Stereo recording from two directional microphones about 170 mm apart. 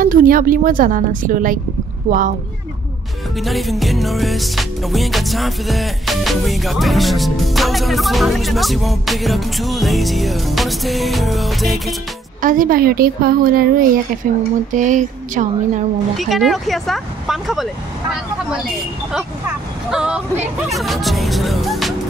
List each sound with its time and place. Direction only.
0.0 s a woman's voice: 55° right (ahead or behind)
3.3 s music: centre (ahead or behind)
12.4 s a woman's voice: 55° right (ahead or behind)
16.2 s music: centre (ahead or behind)
19.9 s music: 5° right (ahead or behind)